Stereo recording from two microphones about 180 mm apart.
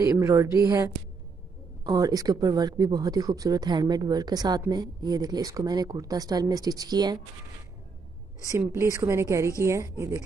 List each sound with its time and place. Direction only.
0.1 s speech: 15° right (ahead or behind)
8.5 s a woman's voice: 15° right (ahead or behind)